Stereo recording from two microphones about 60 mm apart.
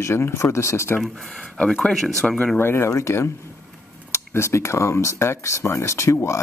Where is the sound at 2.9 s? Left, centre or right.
Left.